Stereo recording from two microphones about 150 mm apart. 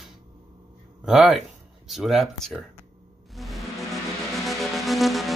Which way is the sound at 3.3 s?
Centre (ahead or behind).